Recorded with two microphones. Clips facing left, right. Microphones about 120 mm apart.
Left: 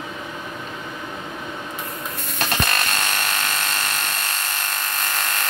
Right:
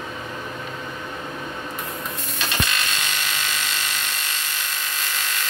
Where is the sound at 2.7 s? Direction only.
50° left (ahead or behind).